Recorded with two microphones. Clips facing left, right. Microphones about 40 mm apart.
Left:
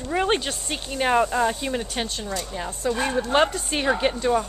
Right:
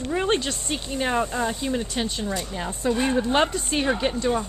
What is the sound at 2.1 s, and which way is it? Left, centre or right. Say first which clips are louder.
Speech: right 1 dB; centre.